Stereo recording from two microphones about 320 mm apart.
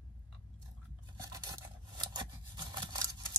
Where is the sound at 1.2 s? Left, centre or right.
Centre.